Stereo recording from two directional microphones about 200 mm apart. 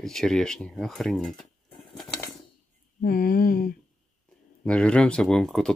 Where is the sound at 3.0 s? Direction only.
45° left (ahead or behind).